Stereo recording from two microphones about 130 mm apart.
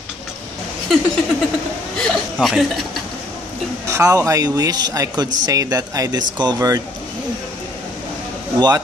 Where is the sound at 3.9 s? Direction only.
25° right (ahead or behind).